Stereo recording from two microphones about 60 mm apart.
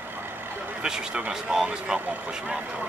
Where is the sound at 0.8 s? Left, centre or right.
Centre.